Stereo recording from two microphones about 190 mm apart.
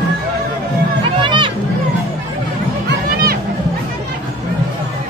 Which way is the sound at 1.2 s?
25° right (ahead or behind).